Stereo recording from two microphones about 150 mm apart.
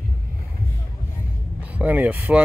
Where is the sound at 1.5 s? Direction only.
10° right (ahead or behind).